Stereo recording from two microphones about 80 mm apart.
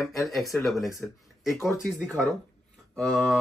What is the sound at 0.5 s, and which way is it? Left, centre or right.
Speech, left.